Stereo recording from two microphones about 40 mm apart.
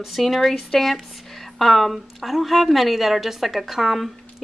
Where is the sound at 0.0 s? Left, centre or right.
Centre.